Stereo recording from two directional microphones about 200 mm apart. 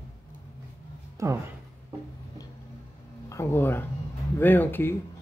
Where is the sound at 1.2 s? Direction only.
15° right (ahead or behind).